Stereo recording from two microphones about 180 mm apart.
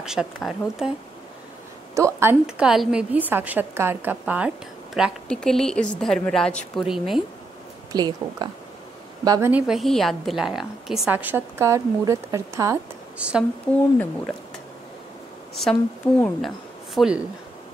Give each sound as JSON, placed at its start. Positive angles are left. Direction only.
{"t": 0.0, "sound": "a woman's voice", "side_deg": -5}
{"t": 2.0, "sound": "a woman's voice", "side_deg": -15}
{"t": 2.4, "sound": "a woman's voice", "side_deg": -5}
{"t": 7.9, "sound": "speech", "side_deg": -25}
{"t": 9.5, "sound": "a woman's voice", "side_deg": -5}
{"t": 13.2, "sound": "a woman's voice", "side_deg": -5}
{"t": 15.5, "sound": "speech", "side_deg": 5}